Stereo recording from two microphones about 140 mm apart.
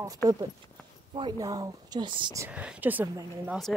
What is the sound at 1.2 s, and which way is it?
Speech, 30° right (ahead or behind).